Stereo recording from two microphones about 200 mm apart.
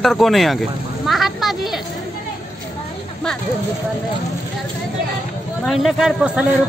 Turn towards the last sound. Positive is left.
turn(degrees=-5)  # may be behind; listen again after turning